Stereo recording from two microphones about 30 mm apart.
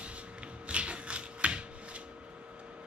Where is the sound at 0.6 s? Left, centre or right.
Right.